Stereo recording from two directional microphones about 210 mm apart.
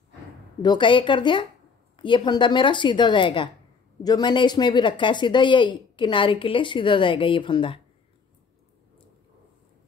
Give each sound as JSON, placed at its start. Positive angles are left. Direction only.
{"t": 0.6, "sound": "speech", "side_deg": 20}